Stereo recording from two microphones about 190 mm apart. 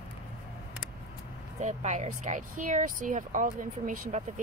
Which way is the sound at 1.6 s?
35° right (ahead or behind).